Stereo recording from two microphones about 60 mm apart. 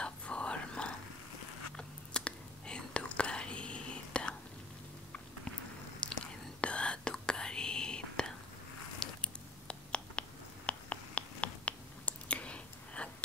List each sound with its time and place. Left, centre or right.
0.0 s whispering: centre
6.0 s whispering: centre
9.0 s biting: centre
10.7 s a sound: left